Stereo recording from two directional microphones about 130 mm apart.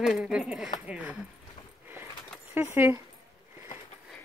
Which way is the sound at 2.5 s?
15° right (ahead or behind).